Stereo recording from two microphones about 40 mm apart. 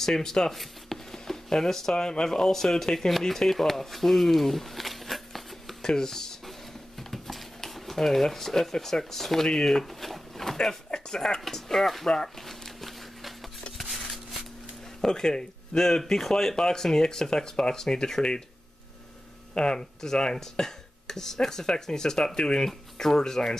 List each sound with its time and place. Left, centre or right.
0.0 s speech: centre
3.1 s speech: centre
5.8 s a sound: centre
7.0 s speech: centre
9.8 s a sound: centre
15.0 s speech: centre
19.5 s speech: left
22.7 s speech: centre